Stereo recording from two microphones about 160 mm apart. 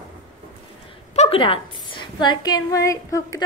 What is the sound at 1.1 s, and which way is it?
A woman's voice, 40° left (ahead or behind).